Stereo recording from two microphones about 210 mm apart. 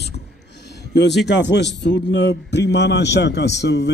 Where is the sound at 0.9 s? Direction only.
55° left (ahead or behind).